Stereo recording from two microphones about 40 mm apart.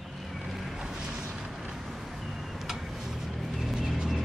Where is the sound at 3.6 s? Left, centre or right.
Centre.